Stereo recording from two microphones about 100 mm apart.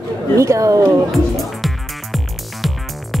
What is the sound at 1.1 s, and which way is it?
Music, centre (ahead or behind).